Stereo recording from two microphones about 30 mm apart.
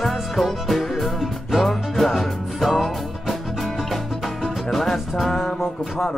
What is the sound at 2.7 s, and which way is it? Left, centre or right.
Music, centre.